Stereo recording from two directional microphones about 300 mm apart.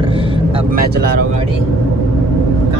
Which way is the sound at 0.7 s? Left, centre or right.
Right.